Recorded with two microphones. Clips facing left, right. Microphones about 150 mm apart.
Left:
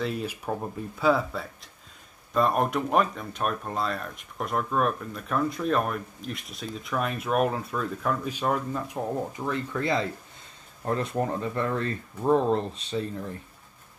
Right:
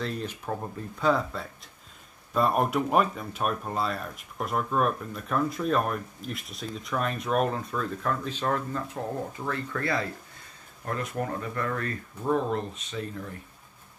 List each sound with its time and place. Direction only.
0.0 s speech: 5° left (ahead or behind); by 13.1 s 30° left (ahead or behind)